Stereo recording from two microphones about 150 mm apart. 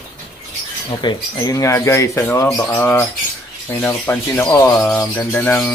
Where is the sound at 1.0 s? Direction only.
25° left (ahead or behind); by 5.7 s 10° left (ahead or behind).